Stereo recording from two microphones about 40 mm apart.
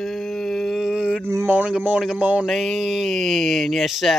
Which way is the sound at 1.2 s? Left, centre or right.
Right.